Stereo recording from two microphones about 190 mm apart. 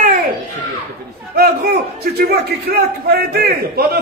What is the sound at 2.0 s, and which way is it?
A man's voice, 55° right (ahead or behind).